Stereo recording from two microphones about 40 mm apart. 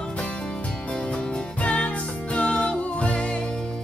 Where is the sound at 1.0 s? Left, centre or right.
Left.